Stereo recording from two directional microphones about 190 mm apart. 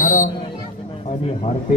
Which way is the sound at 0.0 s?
45° left (ahead or behind).